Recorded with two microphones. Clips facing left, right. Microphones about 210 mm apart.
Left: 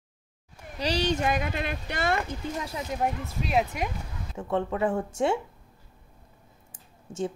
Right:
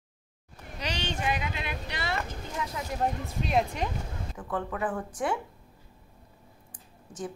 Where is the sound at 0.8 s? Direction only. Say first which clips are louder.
Left 7 dB; 35° left (ahead or behind).